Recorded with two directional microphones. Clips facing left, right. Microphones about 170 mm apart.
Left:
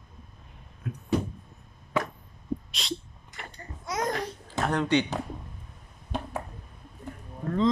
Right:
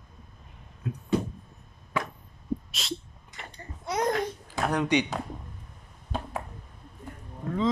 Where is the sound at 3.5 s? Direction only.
30° right (ahead or behind).